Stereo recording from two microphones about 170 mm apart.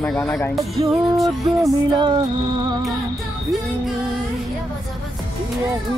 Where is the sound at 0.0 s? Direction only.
10° left (ahead or behind).